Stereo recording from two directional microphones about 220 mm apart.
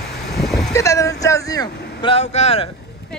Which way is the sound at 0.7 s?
15° left (ahead or behind).